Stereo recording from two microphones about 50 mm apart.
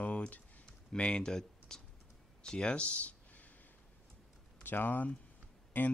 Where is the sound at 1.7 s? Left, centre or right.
Centre.